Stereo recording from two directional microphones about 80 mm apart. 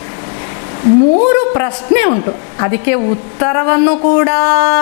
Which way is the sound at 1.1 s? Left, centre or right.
Left.